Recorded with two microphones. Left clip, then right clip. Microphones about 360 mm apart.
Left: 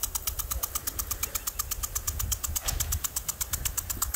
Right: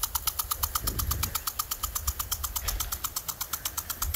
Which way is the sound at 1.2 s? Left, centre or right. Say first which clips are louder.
Right 2 dB; centre.